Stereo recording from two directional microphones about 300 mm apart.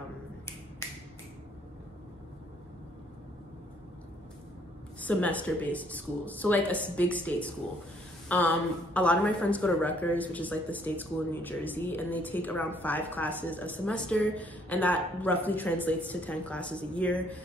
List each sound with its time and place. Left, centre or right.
5.0 s speech: centre